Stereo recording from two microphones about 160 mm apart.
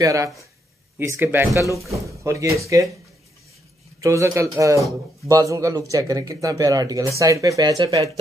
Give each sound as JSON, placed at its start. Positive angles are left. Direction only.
{"t": 0.0, "sound": "speech", "side_deg": -20}
{"t": 4.0, "sound": "speech", "side_deg": -20}